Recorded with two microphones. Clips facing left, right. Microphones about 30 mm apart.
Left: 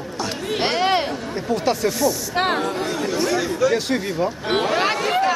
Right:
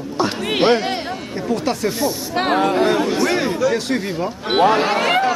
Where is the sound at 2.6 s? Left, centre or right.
Right.